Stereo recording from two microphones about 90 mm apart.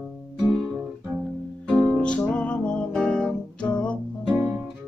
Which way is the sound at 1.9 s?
15° left (ahead or behind).